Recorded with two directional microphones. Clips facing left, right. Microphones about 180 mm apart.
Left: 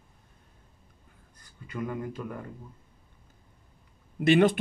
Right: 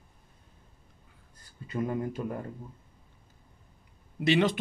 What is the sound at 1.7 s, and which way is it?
Speech, 30° right (ahead or behind).